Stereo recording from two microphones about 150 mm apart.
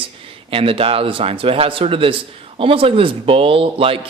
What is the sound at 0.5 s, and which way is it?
Speech, 40° right (ahead or behind).